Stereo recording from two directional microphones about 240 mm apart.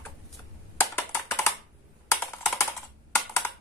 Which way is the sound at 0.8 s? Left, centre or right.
Centre.